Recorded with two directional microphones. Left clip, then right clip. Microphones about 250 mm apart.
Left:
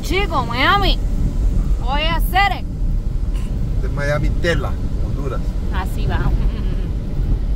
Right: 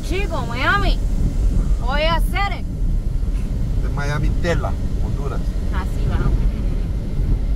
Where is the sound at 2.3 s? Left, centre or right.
Centre.